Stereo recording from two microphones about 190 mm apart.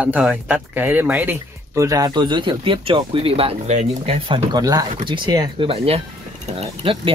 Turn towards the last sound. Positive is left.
turn(degrees=-30)  # may be behind; listen again after turning